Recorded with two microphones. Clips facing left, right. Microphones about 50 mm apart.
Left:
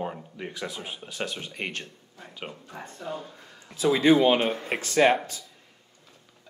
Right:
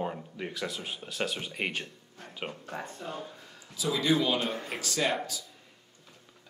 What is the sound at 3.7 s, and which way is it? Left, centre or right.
A man's voice, left.